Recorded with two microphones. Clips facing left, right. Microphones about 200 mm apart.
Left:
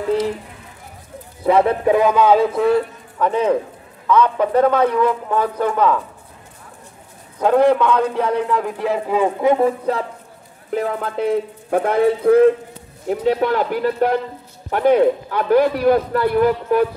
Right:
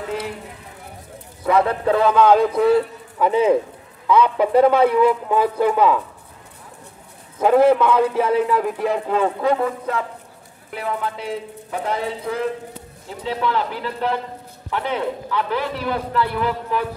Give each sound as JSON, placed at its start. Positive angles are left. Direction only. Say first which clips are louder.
{"t": 1.4, "sound": "a man's voice", "louder": "left 3 dB", "side_deg": 25}
{"t": 7.3, "sound": "a man's voice", "louder": "even", "side_deg": -5}
{"t": 9.4, "sound": "speech", "louder": "left 4 dB", "side_deg": 25}
{"t": 10.7, "sound": "a man's voice", "louder": "left 4 dB", "side_deg": 45}